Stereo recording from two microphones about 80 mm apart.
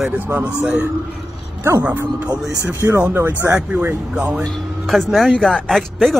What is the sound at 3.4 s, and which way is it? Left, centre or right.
Speech, right.